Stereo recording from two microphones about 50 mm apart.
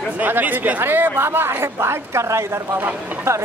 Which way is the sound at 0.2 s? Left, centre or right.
Right.